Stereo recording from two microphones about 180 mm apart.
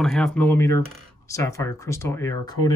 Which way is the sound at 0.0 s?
5° left (ahead or behind).